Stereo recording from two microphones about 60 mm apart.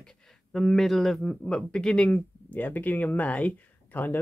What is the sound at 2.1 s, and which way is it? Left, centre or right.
Speech, left.